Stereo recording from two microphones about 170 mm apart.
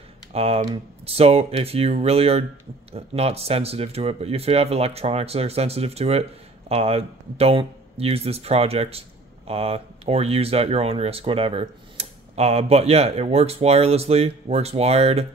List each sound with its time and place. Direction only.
0.3 s speech: 35° right (ahead or behind)